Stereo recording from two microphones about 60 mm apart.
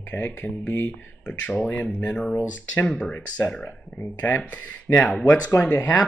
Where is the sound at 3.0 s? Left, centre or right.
Left.